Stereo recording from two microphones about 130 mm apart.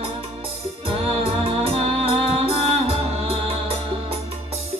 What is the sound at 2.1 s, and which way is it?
Music, 50° right (ahead or behind).